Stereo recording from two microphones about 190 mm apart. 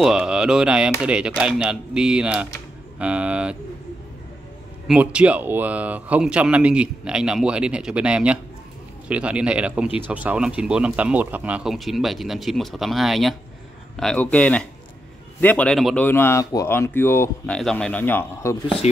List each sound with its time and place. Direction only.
0.0 s speech: 5° right (ahead or behind)
4.8 s speech: 5° right (ahead or behind); by 18.6 s 15° left (ahead or behind)